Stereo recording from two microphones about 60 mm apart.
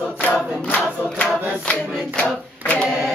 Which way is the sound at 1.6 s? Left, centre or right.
Left.